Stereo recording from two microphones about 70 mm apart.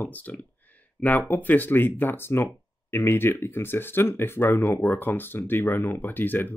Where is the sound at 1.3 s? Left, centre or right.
Left.